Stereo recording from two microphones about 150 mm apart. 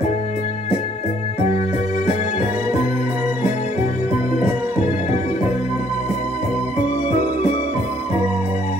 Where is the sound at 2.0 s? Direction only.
50° left (ahead or behind).